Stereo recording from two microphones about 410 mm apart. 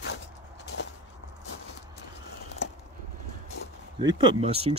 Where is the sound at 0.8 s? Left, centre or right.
Left.